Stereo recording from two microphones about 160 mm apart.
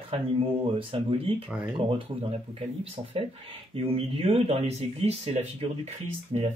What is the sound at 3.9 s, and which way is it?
Speech, 40° right (ahead or behind).